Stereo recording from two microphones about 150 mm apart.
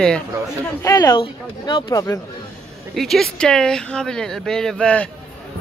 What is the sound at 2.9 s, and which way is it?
Speech, centre (ahead or behind).